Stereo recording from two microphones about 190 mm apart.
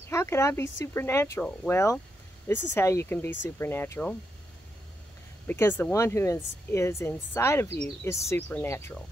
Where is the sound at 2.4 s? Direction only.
15° left (ahead or behind).